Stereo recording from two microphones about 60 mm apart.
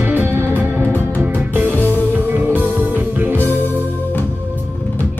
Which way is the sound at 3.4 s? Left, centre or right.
Left.